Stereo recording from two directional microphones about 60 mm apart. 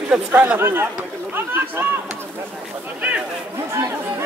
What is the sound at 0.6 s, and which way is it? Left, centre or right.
Speech, right.